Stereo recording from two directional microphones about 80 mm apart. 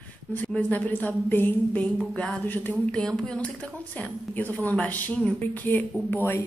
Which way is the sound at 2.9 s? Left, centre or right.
Centre.